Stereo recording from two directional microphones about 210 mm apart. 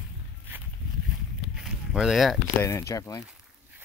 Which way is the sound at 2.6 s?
15° left (ahead or behind).